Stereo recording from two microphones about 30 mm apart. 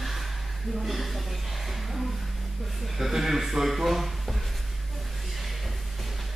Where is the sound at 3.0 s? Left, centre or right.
Centre.